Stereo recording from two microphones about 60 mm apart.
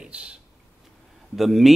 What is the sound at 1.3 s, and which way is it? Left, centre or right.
Speech, centre.